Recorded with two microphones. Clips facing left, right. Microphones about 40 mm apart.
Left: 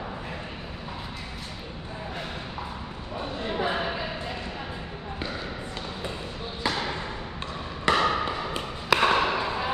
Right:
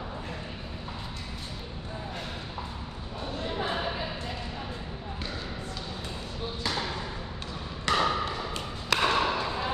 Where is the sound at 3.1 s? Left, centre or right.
Left.